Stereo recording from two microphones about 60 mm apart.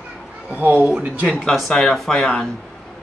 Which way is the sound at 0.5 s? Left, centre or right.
Right.